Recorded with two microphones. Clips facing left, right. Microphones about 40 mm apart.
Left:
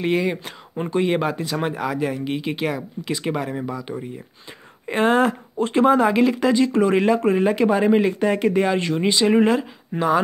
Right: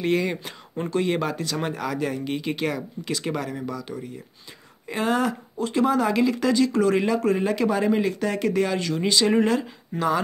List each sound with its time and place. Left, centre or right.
0.0 s speech: centre
4.8 s speech: left; by 10.2 s centre